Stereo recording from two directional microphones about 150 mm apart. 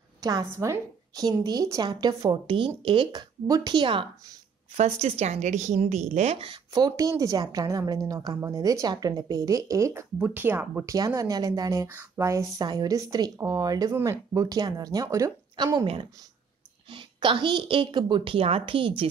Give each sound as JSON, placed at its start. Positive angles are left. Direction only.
{"t": 0.2, "sound": "a woman's voice", "side_deg": -25}
{"t": 4.7, "sound": "speech", "side_deg": -45}
{"t": 6.7, "sound": "speech", "side_deg": -25}
{"t": 10.9, "sound": "speech", "side_deg": -20}
{"t": 16.9, "sound": "a woman's voice", "side_deg": -35}